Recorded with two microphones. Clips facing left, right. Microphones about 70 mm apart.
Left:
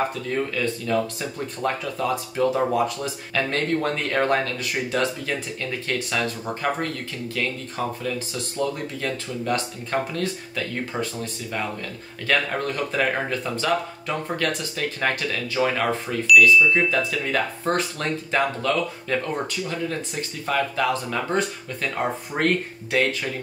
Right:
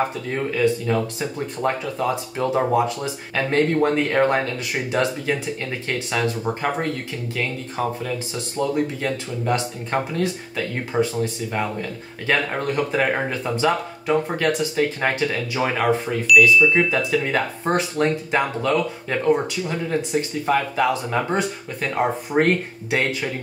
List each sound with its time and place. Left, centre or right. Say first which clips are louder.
0.3 s speech: right 4 dB; right
12.3 s speech: right 2 dB; right
16.3 s speech: even; centre
16.7 s speech: right 3 dB; right